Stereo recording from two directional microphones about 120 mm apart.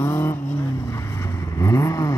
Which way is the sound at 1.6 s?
25° left (ahead or behind).